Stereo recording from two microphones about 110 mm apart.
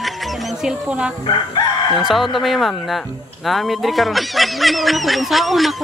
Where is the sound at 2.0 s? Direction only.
5° right (ahead or behind).